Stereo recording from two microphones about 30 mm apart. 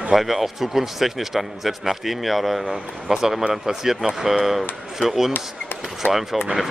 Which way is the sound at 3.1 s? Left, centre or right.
Centre.